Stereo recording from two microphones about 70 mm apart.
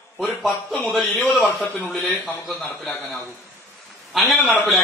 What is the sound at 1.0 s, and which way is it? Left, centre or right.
Speech, centre.